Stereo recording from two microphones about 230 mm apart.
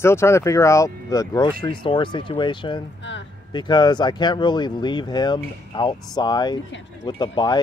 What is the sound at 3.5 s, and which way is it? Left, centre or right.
Speech, centre.